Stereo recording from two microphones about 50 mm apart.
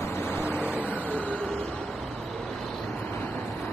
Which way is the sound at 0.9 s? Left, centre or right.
Left.